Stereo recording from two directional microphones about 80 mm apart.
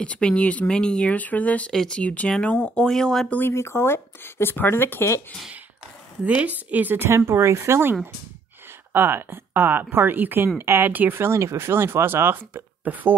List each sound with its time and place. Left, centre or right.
0.0 s speech: centre
3.3 s speech: left
6.2 s speech: centre; by 7.9 s right
8.9 s speech: right